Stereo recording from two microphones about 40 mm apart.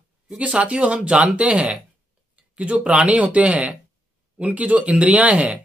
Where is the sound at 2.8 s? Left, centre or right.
Right.